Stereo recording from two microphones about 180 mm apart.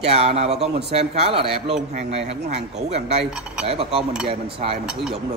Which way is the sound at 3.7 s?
35° right (ahead or behind).